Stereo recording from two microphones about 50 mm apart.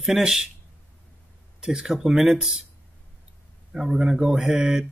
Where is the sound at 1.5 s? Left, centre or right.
Centre.